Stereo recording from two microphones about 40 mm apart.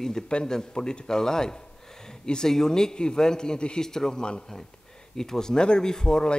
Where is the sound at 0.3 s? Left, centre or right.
Centre.